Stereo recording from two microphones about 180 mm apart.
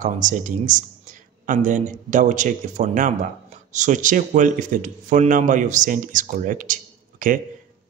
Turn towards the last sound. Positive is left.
turn(degrees=-45)  # may be behind; listen again after turning